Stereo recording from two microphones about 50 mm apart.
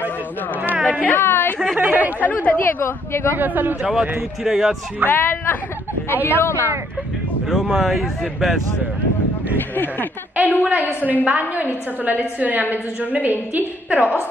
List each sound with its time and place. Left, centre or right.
1.1 s speech: left
1.8 s a woman's voice: right
2.4 s speech: left
2.8 s speech: left
3.3 s a woman's voice: right
4.5 s speech: centre
5.0 s speech: left
7.4 s speech: centre
10.3 s a woman's voice: right